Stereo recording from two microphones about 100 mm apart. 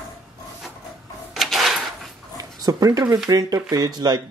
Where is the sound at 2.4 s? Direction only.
40° right (ahead or behind).